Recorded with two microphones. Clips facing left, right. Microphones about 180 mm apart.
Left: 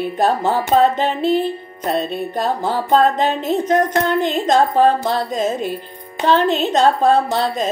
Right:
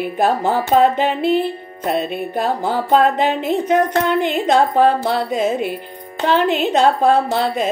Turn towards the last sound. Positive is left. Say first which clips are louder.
# right 1 dB
turn(degrees=-10)  # may be behind; listen again after turning